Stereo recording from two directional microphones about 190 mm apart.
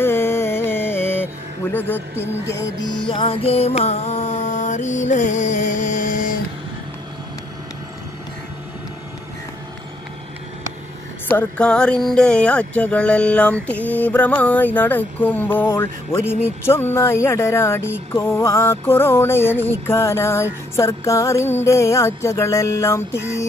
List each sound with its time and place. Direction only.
0.0 s music: 10° left (ahead or behind)
2.4 s music: 70° left (ahead or behind)
3.1 s music: 25° left (ahead or behind); by 6.4 s 45° left (ahead or behind)
11.2 s speech: 5° left (ahead or behind)